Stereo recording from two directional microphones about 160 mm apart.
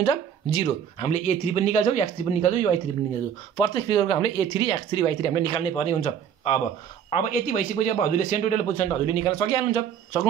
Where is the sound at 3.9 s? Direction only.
30° left (ahead or behind); by 8.6 s 50° left (ahead or behind).